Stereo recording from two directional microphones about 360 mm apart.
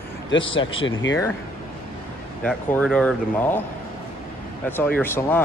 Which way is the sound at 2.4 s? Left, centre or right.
Centre.